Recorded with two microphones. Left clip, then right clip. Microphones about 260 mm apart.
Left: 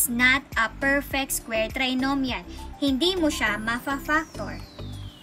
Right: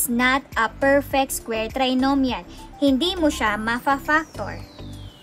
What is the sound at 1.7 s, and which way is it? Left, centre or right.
Speech, centre.